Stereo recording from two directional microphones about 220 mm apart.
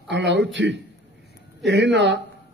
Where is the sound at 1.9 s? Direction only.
50° right (ahead or behind).